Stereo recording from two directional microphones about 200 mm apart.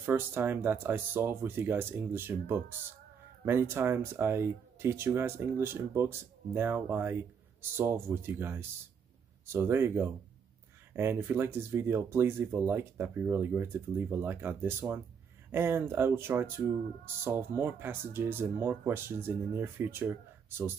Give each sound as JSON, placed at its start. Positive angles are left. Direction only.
{"t": 0.0, "sound": "speech", "side_deg": -10}